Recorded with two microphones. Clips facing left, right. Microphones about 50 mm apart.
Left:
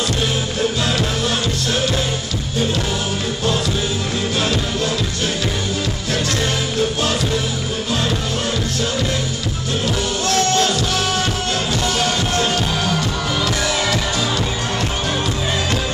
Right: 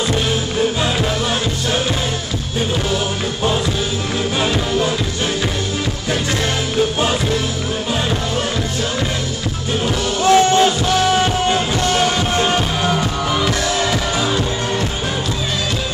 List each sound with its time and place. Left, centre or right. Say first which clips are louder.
10.2 s music: right 7 dB; centre